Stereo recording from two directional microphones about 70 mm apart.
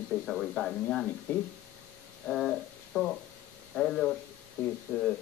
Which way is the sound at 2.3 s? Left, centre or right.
Centre.